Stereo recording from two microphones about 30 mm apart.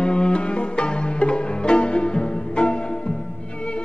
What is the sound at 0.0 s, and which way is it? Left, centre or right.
Music, left.